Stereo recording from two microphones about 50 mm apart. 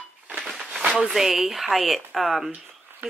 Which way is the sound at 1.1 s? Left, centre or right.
Centre.